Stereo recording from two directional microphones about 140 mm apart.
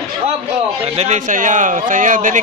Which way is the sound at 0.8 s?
50° right (ahead or behind).